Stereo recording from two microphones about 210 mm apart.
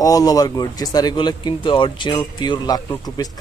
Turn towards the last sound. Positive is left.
turn(degrees=20)  # may be behind; listen again after turning